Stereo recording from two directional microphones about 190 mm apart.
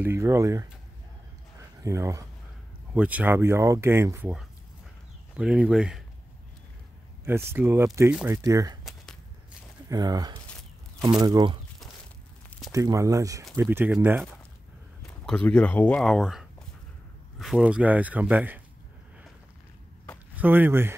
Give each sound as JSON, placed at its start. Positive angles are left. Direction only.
{"t": 0.0, "sound": "speech", "side_deg": -15}
{"t": 1.8, "sound": "speech", "side_deg": -15}
{"t": 7.5, "sound": "speech", "side_deg": -10}
{"t": 8.8, "sound": "a sound", "side_deg": 0}
{"t": 9.8, "sound": "speech", "side_deg": -20}
{"t": 12.4, "sound": "a sound", "side_deg": 0}
{"t": 12.7, "sound": "speech", "side_deg": -15}
{"t": 15.0, "sound": "speech", "side_deg": 5}
{"t": 20.3, "sound": "speech", "side_deg": -10}